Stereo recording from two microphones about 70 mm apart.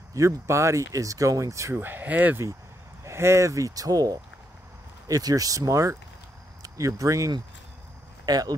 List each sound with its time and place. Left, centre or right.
0.1 s speech: right
1.8 s speech: right
3.0 s speech: right
8.3 s speech: right